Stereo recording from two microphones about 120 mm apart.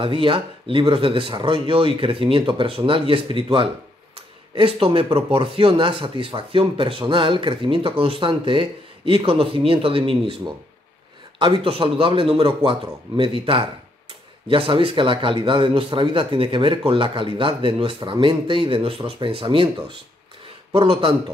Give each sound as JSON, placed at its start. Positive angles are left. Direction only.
{"t": 0.0, "sound": "speech", "side_deg": -45}
{"t": 4.6, "sound": "speech", "side_deg": -50}
{"t": 20.7, "sound": "speech", "side_deg": -50}